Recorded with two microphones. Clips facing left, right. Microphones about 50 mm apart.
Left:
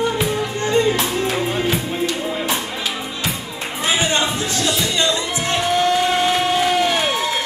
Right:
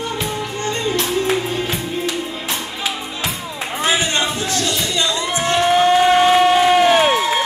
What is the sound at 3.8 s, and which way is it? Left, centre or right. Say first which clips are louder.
Music: even; centre.